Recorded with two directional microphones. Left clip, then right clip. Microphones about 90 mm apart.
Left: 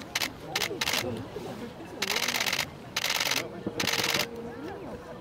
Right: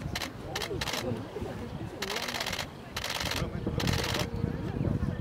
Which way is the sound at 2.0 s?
35° left (ahead or behind).